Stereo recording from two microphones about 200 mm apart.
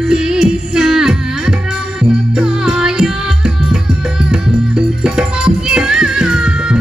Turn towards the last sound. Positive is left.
turn(degrees=-5)  # may be behind; listen again after turning